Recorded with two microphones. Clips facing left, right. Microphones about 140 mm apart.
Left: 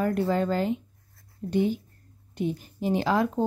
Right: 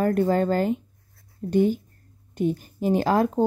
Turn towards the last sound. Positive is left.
turn(degrees=-45)  # may be behind; listen again after turning